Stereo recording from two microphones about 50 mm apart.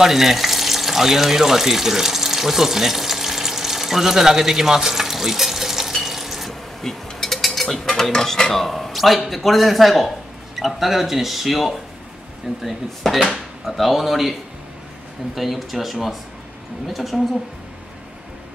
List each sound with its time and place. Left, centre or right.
0.0 s water: centre
6.8 s a sound: centre
7.9 s speech: centre
15.3 s speech: centre